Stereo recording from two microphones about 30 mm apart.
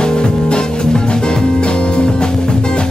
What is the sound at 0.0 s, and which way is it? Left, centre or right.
Music, left.